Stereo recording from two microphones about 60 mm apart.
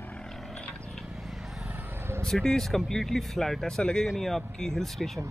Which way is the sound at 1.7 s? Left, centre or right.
Right.